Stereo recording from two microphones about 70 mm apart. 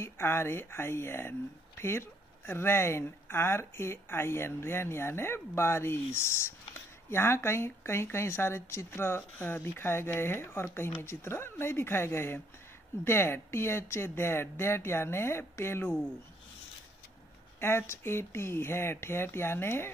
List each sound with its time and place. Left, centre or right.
0.0 s speech: left
17.6 s speech: left